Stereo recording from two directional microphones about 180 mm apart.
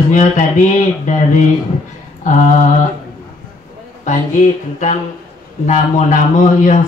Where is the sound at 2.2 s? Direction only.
45° left (ahead or behind).